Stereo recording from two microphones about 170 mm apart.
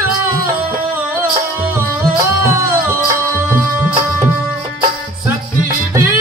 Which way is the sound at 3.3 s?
15° left (ahead or behind).